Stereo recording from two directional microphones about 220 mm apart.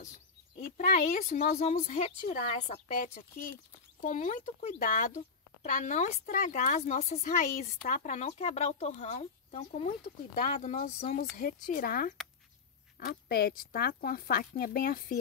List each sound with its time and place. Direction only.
0.7 s speech: 40° left (ahead or behind)
11.1 s speech: 40° left (ahead or behind)